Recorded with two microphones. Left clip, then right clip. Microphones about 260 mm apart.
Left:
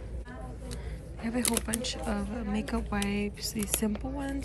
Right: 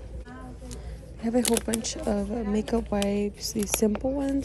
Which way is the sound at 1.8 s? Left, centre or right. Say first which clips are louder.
Right 5 dB; right.